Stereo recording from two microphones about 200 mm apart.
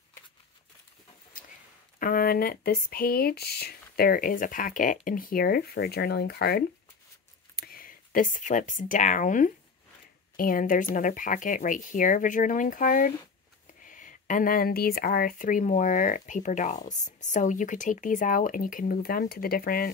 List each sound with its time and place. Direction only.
2.0 s speech: 45° left (ahead or behind)